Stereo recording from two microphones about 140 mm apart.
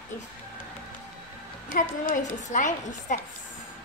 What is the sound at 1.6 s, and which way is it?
A woman's voice, 75° left (ahead or behind).